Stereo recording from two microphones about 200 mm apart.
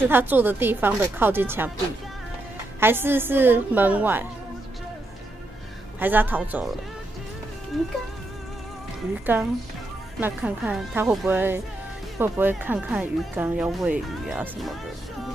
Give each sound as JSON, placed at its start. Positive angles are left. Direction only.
{"t": 0.1, "sound": "speech", "side_deg": -10}
{"t": 2.8, "sound": "speech", "side_deg": -10}
{"t": 5.9, "sound": "speech", "side_deg": -10}
{"t": 9.2, "sound": "speech", "side_deg": -10}